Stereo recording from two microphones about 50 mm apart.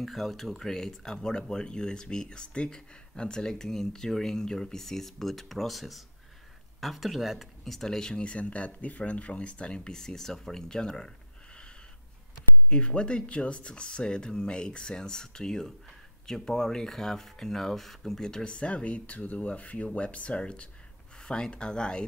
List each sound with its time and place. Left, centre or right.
0.0 s speech: centre
12.6 s speech: left